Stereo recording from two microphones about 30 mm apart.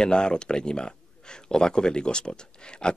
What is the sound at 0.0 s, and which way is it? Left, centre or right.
Speech, left.